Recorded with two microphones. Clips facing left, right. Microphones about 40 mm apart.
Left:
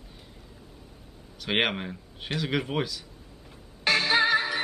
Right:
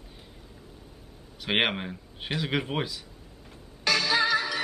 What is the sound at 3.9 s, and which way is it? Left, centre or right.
Music, left.